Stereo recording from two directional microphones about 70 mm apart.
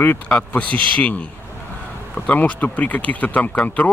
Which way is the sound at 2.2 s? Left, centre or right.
Left.